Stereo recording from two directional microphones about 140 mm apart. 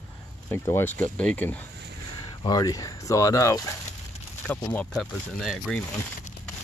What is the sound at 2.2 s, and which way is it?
Speech, 30° left (ahead or behind).